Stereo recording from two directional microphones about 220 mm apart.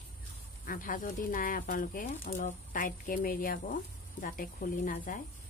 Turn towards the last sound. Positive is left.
turn(degrees=40)  # may be behind; listen again after turning